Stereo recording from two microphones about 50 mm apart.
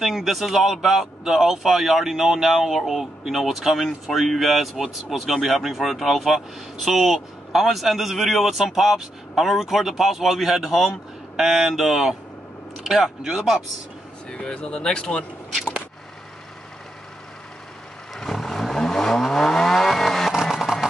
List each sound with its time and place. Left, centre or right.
0.0 s speech: centre
14.3 s speech: centre
18.1 s vehicle: centre